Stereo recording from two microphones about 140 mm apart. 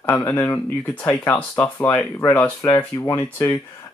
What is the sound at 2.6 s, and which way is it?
Speech, 25° left (ahead or behind).